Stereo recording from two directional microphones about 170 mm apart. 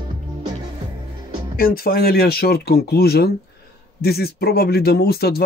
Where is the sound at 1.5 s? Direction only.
60° left (ahead or behind).